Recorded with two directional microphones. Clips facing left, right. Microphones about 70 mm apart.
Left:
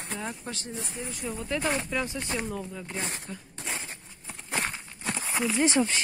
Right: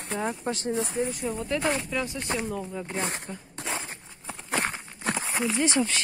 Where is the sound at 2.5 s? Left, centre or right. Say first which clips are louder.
Right 3 dB; centre.